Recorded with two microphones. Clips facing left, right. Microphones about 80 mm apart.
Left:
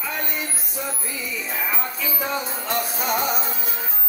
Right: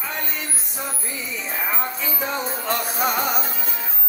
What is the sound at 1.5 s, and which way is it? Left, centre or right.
Music, right.